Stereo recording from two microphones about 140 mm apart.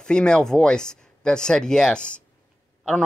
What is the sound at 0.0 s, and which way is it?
Speech, 5° left (ahead or behind).